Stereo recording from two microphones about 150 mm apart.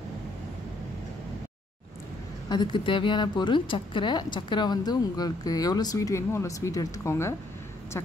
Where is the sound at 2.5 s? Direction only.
30° left (ahead or behind).